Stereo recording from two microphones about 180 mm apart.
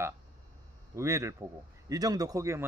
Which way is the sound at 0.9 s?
15° right (ahead or behind).